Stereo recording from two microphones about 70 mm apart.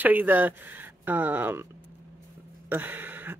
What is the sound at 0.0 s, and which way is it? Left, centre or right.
Speech, right.